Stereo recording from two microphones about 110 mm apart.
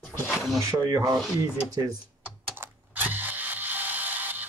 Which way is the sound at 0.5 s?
30° right (ahead or behind).